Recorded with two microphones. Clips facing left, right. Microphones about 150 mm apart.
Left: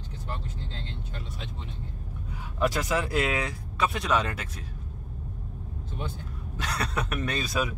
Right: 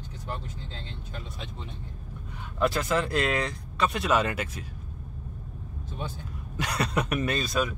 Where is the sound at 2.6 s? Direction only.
10° left (ahead or behind); by 4.5 s 5° right (ahead or behind).